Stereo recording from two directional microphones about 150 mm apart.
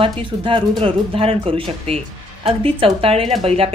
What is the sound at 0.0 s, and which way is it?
Speech, 35° right (ahead or behind).